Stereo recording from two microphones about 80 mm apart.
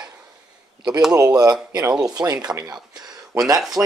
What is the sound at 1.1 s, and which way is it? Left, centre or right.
Speech, right.